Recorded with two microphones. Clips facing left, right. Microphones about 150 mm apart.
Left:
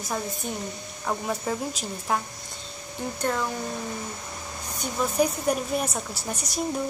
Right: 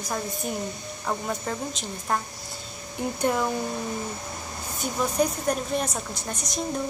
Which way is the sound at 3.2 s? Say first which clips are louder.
Right 3 dB; 15° right (ahead or behind).